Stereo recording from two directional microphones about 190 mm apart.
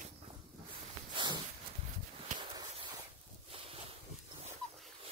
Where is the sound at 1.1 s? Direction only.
25° right (ahead or behind).